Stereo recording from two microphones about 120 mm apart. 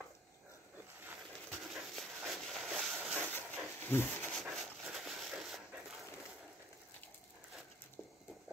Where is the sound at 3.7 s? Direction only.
15° left (ahead or behind).